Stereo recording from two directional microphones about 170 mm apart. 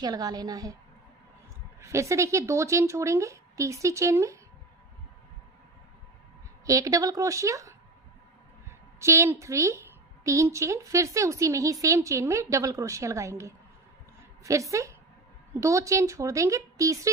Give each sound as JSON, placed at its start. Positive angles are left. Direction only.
{"t": 0.0, "sound": "a woman's voice", "side_deg": -25}
{"t": 1.8, "sound": "a woman's voice", "side_deg": -15}
{"t": 6.6, "sound": "a woman's voice", "side_deg": -20}